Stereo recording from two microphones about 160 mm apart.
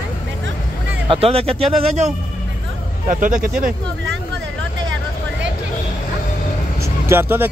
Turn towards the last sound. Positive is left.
turn(degrees=-15)  # may be behind; listen again after turning